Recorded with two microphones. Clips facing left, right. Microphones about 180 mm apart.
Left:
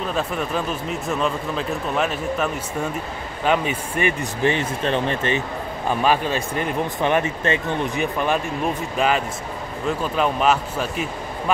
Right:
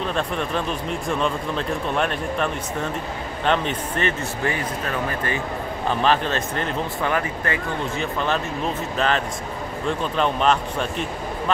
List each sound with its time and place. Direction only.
0.0 s speech: 5° left (ahead or behind); by 5.4 s 25° left (ahead or behind)
5.9 s speech: 10° left (ahead or behind)